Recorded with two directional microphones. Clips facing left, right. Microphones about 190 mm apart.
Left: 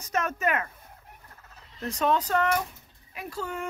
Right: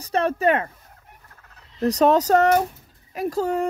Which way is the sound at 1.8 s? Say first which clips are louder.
Right 9 dB; 40° right (ahead or behind).